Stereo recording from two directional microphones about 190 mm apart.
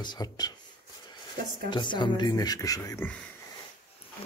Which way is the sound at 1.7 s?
25° left (ahead or behind).